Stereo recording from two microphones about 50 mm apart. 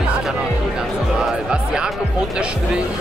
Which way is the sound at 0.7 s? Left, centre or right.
Centre.